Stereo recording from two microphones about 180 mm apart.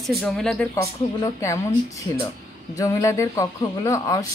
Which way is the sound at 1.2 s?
15° left (ahead or behind).